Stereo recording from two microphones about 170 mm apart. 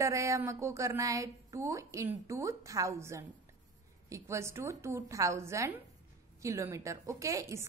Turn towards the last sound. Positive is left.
turn(degrees=-15)  # may be behind; listen again after turning